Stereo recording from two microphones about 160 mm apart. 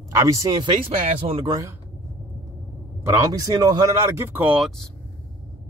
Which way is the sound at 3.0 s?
20° right (ahead or behind).